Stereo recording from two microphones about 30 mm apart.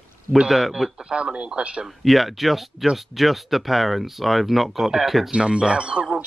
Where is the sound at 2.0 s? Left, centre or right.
Centre.